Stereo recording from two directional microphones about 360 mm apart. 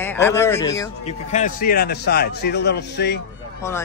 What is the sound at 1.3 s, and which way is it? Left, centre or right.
Speech, left.